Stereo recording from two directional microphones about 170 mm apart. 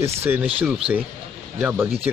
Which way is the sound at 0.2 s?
10° right (ahead or behind).